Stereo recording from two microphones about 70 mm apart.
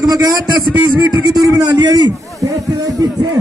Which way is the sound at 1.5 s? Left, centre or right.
Right.